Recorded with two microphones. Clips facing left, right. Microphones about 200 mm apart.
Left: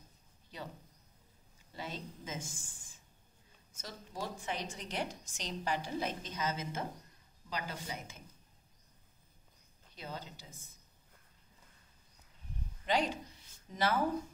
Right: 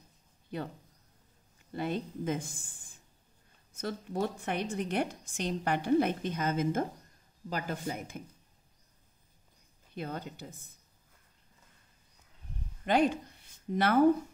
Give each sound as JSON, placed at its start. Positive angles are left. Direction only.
{"t": 0.5, "sound": "a woman's voice", "side_deg": -55}
{"t": 1.7, "sound": "a woman's voice", "side_deg": -60}
{"t": 9.9, "sound": "a woman's voice", "side_deg": -55}
{"t": 12.8, "sound": "speech", "side_deg": -55}